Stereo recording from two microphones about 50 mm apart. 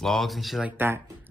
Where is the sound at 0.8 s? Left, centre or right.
Right.